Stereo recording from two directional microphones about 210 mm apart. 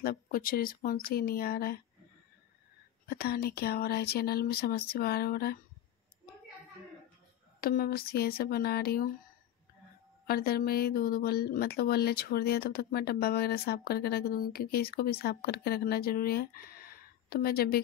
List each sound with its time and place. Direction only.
0.0 s speech: 45° left (ahead or behind)
3.1 s speech: 45° left (ahead or behind)
7.6 s speech: 45° left (ahead or behind)
10.2 s speech: 45° left (ahead or behind)